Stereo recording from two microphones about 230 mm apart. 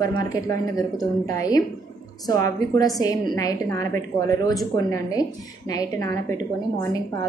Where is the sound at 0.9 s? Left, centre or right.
Centre.